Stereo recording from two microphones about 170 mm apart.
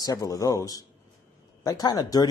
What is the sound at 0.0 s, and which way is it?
Speech, 20° left (ahead or behind).